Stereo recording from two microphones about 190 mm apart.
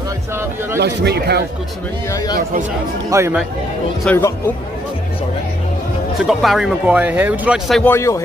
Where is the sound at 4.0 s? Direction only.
10° left (ahead or behind).